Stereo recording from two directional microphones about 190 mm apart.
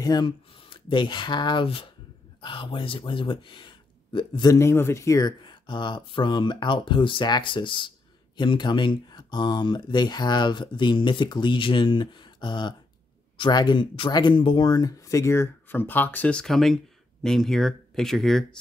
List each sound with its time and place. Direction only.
0.0 s speech: 20° left (ahead or behind); by 18.6 s centre (ahead or behind)